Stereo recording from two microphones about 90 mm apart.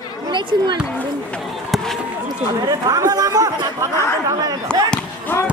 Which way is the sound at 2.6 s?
40° right (ahead or behind).